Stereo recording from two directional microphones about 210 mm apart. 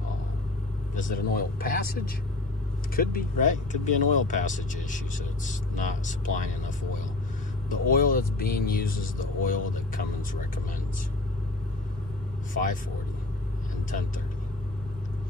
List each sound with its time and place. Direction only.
0.9 s speech: 40° left (ahead or behind)
7.7 s speech: 40° left (ahead or behind)